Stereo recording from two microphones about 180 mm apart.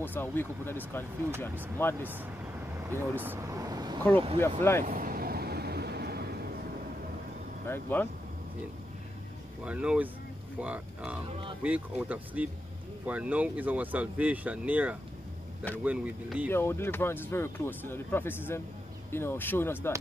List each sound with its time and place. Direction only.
0.0 s speech: 10° left (ahead or behind)
2.9 s vehicle: 15° right (ahead or behind)
4.4 s speech: 15° left (ahead or behind)
4.8 s vehicle: 50° right (ahead or behind)
7.6 s speech: 10° left (ahead or behind)
9.7 s speech: 5° right (ahead or behind)
16.4 s speech: 15° left (ahead or behind)